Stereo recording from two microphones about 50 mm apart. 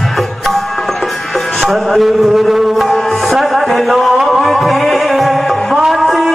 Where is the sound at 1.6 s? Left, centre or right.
Centre.